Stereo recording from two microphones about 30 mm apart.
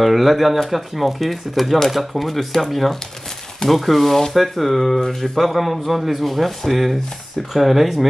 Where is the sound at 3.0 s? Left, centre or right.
Centre.